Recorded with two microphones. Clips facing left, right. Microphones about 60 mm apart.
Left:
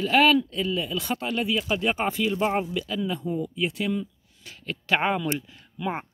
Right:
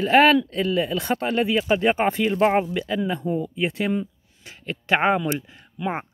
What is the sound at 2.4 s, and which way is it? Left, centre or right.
Speech, right.